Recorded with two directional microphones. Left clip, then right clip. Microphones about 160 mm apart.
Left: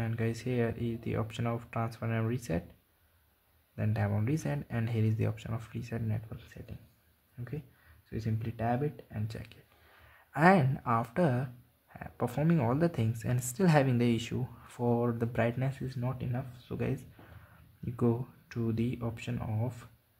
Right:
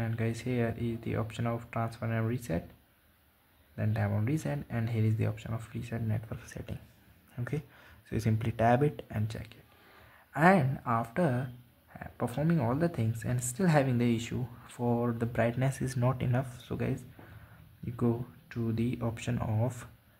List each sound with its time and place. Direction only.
0.0 s speech: centre (ahead or behind)
3.7 s speech: 5° left (ahead or behind)
6.2 s speech: 20° right (ahead or behind)
9.3 s speech: centre (ahead or behind)
16.0 s speech: 20° right (ahead or behind)
16.7 s speech: centre (ahead or behind)